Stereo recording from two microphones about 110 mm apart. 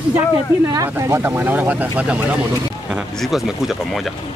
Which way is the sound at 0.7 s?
25° right (ahead or behind).